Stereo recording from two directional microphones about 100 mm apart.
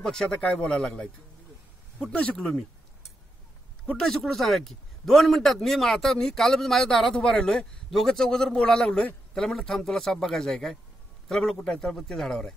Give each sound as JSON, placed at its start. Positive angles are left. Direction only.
{"t": 0.0, "sound": "speech", "side_deg": 5}
{"t": 3.8, "sound": "a man's voice", "side_deg": 10}